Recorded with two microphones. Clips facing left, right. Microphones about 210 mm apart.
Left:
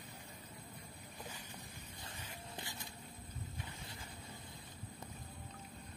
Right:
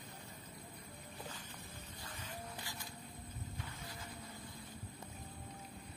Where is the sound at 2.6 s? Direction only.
25° left (ahead or behind).